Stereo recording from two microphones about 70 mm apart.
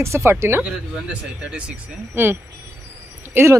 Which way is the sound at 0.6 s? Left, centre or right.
Centre.